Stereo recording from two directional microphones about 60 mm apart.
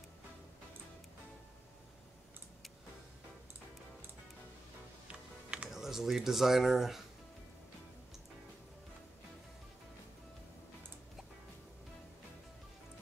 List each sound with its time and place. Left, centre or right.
5.0 s music: centre
5.7 s speech: centre